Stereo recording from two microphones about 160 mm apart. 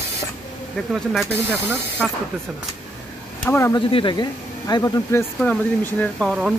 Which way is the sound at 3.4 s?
15° left (ahead or behind).